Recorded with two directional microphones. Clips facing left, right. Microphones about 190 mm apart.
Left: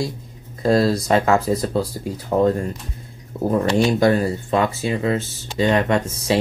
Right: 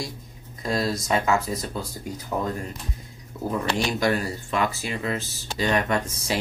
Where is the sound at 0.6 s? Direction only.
30° left (ahead or behind).